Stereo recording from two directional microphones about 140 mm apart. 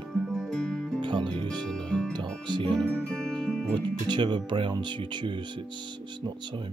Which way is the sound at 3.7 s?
35° right (ahead or behind).